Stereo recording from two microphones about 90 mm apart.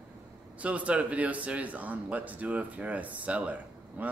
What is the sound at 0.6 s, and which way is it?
A man's voice, 15° right (ahead or behind).